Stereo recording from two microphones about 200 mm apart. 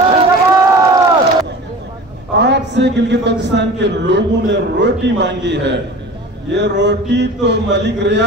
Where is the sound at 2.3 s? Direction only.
60° right (ahead or behind).